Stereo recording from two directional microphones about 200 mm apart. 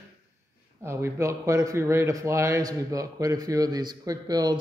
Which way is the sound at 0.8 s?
15° right (ahead or behind).